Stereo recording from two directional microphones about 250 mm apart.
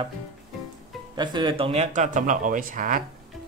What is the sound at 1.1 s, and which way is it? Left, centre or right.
Speech, centre.